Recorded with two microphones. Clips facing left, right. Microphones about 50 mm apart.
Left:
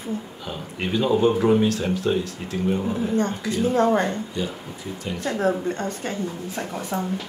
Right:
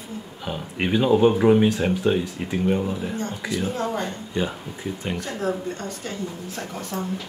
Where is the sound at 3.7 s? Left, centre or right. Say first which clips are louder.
Left 7 dB; left.